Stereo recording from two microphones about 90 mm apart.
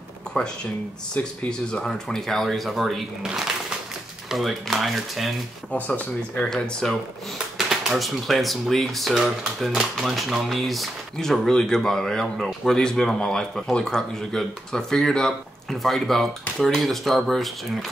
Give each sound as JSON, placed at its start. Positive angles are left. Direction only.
{"t": 1.1, "sound": "speech", "side_deg": 10}
{"t": 5.7, "sound": "speech", "side_deg": 15}
{"t": 6.5, "sound": "speech", "side_deg": 5}